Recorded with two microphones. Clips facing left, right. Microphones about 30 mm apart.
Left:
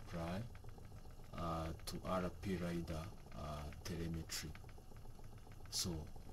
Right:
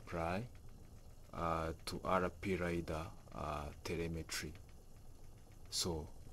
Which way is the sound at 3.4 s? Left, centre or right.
Right.